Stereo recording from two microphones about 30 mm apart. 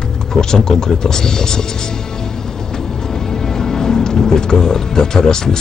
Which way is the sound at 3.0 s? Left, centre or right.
Centre.